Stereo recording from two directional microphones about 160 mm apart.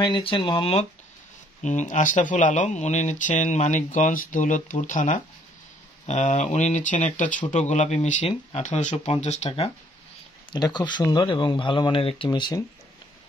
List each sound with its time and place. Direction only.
0.0 s speech: 30° left (ahead or behind)
1.6 s speech: 50° left (ahead or behind)
10.5 s speech: 25° left (ahead or behind)